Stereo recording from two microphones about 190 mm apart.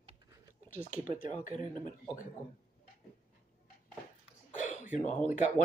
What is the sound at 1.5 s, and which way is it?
Speech, 25° right (ahead or behind).